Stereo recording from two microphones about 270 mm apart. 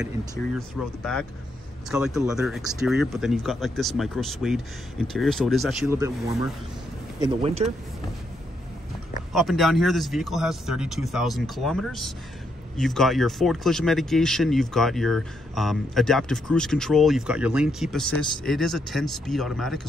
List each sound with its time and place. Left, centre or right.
0.6 s speech: centre; by 7.7 s right
9.3 s speech: centre